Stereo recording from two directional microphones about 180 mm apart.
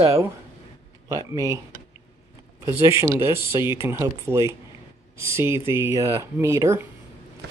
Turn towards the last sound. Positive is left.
turn(degrees=-15)  # may be behind; listen again after turning